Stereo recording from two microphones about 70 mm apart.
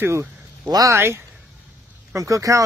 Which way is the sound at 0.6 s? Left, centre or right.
Right.